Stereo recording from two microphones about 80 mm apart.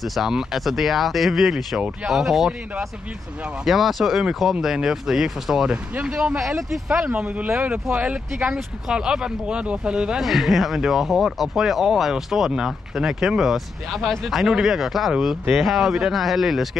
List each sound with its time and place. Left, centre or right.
0.0 s speech: centre